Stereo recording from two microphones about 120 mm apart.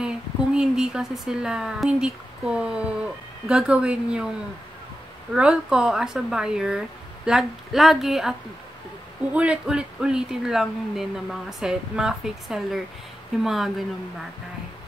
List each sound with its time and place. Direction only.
0.6 s a woman's voice: 5° right (ahead or behind)
5.3 s speech: 5° right (ahead or behind)